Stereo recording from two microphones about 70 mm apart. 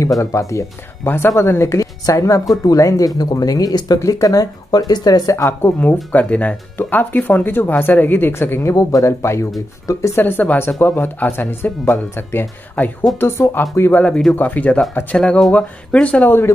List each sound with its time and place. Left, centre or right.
0.2 s speech: left
1.0 s speech: left
1.8 s a woman's voice: left
3.2 s speech: left
4.0 s speech: left
5.3 s speech: left
6.1 s speech: left
10.2 s speech: left
15.1 s speech: centre
16.3 s speech: left